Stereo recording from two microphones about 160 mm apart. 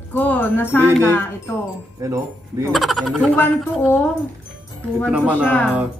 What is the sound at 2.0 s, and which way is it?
Speech, 20° right (ahead or behind).